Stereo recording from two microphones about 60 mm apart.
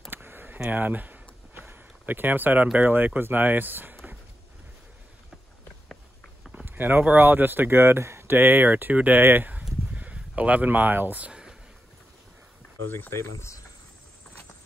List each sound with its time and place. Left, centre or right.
0.1 s a sound: right
0.7 s speech: right
6.5 s speech: right
12.9 s speech: left
13.2 s speech: left